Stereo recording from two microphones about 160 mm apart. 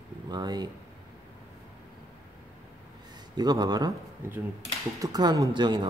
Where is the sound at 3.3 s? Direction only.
25° right (ahead or behind).